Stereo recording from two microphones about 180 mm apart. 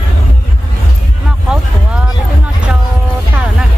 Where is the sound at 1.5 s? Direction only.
5° right (ahead or behind).